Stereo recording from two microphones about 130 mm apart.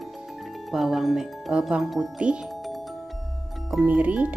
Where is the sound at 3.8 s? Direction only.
10° right (ahead or behind).